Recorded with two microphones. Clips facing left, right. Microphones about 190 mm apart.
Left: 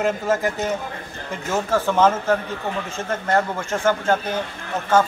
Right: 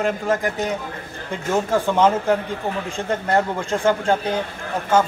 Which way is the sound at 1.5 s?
15° right (ahead or behind).